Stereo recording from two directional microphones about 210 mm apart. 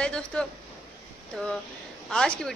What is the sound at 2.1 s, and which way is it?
Speech, 5° left (ahead or behind).